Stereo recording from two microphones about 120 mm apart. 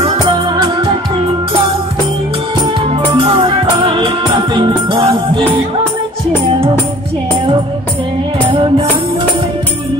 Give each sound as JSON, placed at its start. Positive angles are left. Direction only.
{"t": 0.0, "sound": "music", "side_deg": -40}
{"t": 3.1, "sound": "music", "side_deg": -50}
{"t": 3.3, "sound": "music", "side_deg": -40}
{"t": 8.5, "sound": "music", "side_deg": -45}